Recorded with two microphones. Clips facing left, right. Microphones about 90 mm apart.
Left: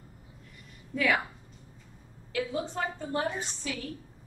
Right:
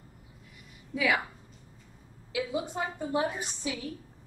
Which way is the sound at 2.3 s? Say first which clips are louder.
Even; 15° right (ahead or behind).